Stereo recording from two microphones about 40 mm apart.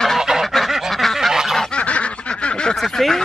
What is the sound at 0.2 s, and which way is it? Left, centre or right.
Goose, centre.